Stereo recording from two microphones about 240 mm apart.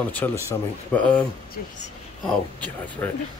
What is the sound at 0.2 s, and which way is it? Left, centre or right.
Speech, centre.